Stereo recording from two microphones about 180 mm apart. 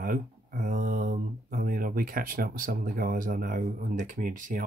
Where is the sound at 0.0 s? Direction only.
50° right (ahead or behind).